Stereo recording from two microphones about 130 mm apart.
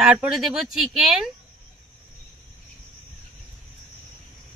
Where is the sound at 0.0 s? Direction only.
10° right (ahead or behind).